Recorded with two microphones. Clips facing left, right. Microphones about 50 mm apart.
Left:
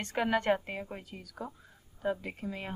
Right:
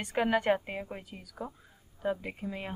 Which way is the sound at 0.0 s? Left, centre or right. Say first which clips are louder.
Right 2 dB; centre.